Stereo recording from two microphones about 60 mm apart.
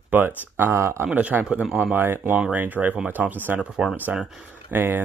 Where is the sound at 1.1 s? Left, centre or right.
Right.